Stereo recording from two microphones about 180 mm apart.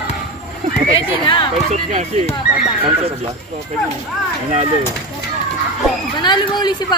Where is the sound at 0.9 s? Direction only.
25° left (ahead or behind).